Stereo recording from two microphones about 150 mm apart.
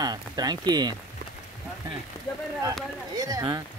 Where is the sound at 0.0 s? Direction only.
25° right (ahead or behind).